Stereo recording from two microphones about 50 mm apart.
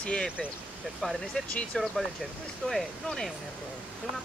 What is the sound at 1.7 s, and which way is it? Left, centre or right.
Speech, centre.